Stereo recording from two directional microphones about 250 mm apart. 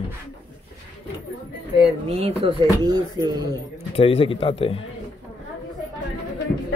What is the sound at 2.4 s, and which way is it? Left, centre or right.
A man's voice, centre.